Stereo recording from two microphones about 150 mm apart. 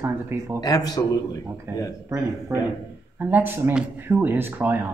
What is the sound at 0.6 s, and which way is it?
Speech, 25° left (ahead or behind).